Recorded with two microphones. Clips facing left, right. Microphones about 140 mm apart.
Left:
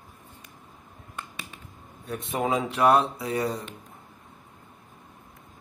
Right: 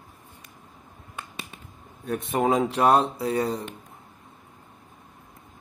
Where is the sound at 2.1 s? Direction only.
45° right (ahead or behind).